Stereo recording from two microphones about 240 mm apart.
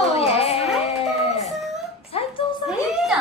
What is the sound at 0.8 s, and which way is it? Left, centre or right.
Music, left.